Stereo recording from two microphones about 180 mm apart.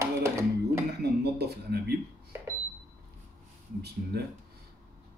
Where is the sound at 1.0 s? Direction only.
65° right (ahead or behind).